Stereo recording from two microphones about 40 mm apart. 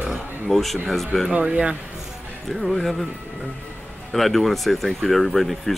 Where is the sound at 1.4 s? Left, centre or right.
Right.